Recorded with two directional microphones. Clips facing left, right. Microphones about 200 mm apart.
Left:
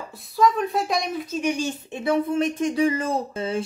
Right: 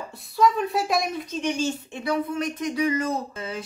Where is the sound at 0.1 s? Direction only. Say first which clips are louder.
Left 1 dB; centre (ahead or behind).